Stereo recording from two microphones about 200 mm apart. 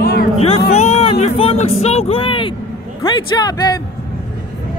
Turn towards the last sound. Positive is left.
turn(degrees=20)  # may be behind; listen again after turning